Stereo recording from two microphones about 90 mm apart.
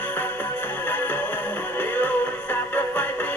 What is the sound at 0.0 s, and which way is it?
Music, 20° left (ahead or behind).